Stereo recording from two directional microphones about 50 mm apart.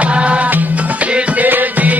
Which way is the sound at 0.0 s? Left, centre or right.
Right.